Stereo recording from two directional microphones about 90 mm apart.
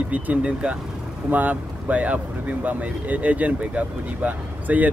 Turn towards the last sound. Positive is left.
turn(degrees=-20)  # may be behind; listen again after turning